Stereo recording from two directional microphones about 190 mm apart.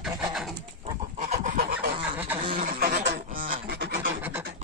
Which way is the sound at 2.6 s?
45° right (ahead or behind).